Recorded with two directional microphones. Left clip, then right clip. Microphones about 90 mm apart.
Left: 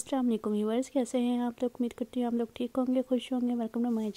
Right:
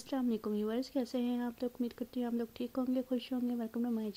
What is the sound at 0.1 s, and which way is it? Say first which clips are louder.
Speech: left 6 dB; 35° left (ahead or behind).